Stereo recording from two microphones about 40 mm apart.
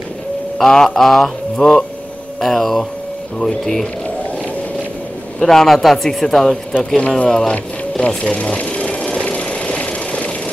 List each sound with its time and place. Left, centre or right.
0.6 s speech: centre
5.4 s speech: centre
7.0 s speech: left
8.2 s sewing machine: left
9.3 s vehicle: left